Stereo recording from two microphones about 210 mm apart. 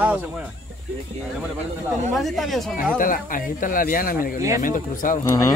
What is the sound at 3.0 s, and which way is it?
Speech, 40° left (ahead or behind).